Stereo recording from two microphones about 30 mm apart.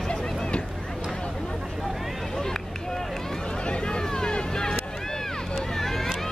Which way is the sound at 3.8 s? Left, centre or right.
Left.